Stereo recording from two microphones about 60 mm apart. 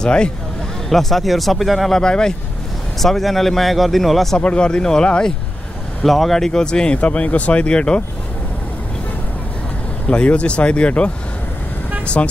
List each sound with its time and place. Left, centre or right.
0.0 s speech: centre
0.8 s speech: centre
4.4 s speech: centre
6.0 s speech: centre
10.0 s speech: left
12.2 s speech: left